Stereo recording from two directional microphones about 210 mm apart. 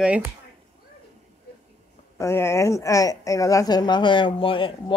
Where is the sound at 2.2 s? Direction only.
10° left (ahead or behind).